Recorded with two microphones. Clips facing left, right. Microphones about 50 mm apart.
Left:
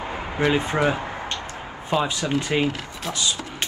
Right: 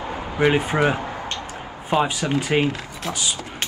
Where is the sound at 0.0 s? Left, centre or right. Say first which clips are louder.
Right 1 dB; left.